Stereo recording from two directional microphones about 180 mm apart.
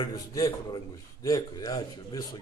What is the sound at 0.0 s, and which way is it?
A man's voice, 20° left (ahead or behind).